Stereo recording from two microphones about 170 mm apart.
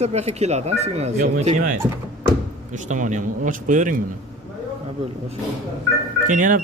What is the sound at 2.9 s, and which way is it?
Speech, 45° right (ahead or behind).